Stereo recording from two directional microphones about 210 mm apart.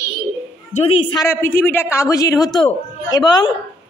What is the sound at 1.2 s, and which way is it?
A woman's voice, 10° left (ahead or behind).